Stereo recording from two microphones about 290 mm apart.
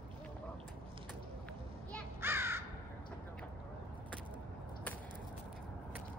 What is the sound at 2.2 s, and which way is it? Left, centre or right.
Crow, centre.